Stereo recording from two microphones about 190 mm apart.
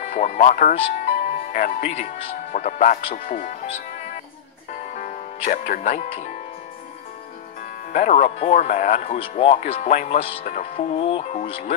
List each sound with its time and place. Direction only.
0.0 s speech: 35° left (ahead or behind)
7.9 s speech: 35° left (ahead or behind)